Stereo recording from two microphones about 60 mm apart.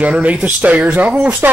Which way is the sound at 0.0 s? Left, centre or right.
Right.